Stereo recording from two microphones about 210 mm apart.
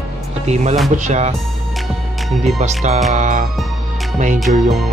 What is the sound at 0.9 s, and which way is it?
Music, 35° right (ahead or behind).